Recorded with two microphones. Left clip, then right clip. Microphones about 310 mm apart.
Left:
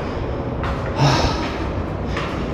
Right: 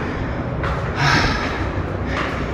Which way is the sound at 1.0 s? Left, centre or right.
Centre.